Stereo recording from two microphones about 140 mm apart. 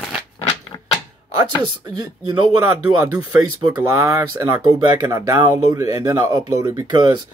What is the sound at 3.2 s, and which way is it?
Speech, 30° right (ahead or behind).